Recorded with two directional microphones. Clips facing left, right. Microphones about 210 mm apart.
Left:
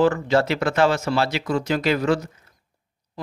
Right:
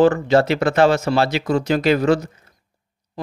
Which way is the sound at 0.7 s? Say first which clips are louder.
Right 4 dB; 60° right (ahead or behind).